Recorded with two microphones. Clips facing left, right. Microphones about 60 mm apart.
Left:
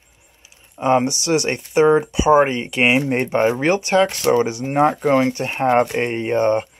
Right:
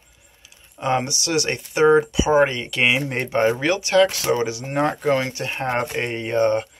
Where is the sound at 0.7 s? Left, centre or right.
Left.